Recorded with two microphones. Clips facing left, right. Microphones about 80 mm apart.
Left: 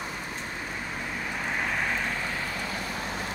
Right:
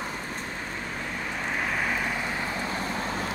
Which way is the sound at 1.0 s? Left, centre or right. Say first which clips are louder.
Even; centre.